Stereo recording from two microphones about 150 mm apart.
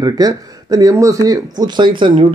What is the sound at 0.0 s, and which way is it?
Speech, 25° right (ahead or behind).